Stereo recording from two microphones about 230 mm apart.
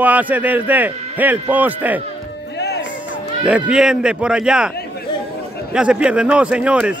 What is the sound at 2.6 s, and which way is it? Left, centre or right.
Music, left.